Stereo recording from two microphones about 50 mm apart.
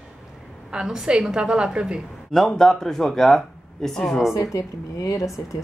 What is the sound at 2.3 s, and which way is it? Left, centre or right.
Speech, centre.